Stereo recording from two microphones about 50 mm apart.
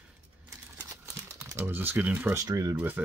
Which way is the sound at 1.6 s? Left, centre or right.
Right.